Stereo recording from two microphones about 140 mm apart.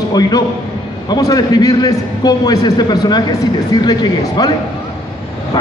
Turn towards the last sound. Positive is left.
turn(degrees=30)  # may be behind; listen again after turning